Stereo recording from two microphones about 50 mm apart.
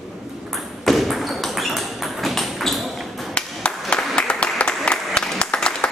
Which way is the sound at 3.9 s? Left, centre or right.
Left.